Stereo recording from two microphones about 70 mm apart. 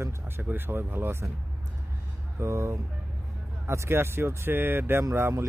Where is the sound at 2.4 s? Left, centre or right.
Right.